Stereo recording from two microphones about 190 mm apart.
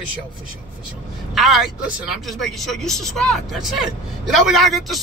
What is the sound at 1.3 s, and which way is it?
Speech, centre (ahead or behind).